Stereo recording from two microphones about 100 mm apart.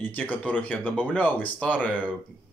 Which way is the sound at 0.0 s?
20° left (ahead or behind).